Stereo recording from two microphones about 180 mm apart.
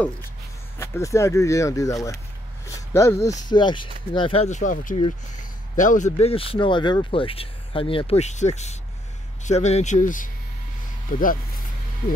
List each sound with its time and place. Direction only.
0.7 s speech: 15° left (ahead or behind); by 11.2 s 50° left (ahead or behind)